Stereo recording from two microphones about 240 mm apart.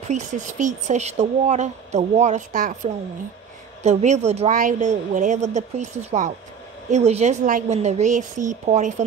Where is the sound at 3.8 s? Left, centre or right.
Right.